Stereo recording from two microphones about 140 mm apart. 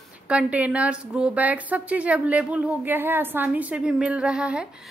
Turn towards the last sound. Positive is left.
turn(degrees=-5)  # may be behind; listen again after turning